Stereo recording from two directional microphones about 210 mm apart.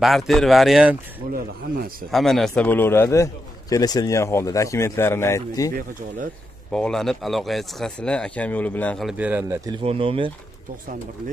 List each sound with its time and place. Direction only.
0.0 s speech: centre (ahead or behind)
1.3 s speech: 45° right (ahead or behind)
2.0 s a man's voice: centre (ahead or behind)
6.7 s speech: 5° left (ahead or behind)
9.1 s speech: 10° right (ahead or behind); by 10.3 s 25° right (ahead or behind)